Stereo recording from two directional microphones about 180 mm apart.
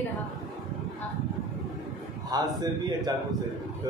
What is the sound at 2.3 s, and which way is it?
Speech, 20° right (ahead or behind).